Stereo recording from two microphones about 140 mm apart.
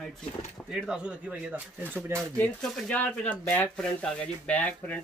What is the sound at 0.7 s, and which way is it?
Speech, 5° right (ahead or behind).